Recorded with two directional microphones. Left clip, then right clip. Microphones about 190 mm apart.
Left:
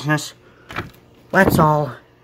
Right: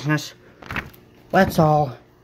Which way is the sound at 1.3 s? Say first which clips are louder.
Left 2 dB; 5° left (ahead or behind).